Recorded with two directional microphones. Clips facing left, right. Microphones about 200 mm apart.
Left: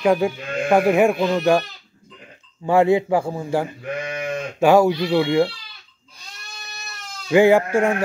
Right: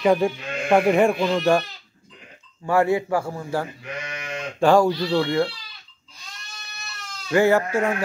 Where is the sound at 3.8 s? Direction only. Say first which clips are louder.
Left 7 dB; 50° left (ahead or behind).